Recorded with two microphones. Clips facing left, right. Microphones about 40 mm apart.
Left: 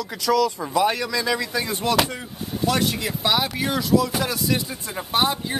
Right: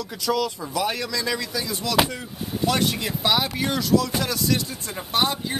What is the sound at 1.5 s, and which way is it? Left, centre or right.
Speech, left.